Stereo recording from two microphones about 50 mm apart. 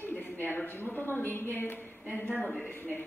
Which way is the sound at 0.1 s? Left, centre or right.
Left.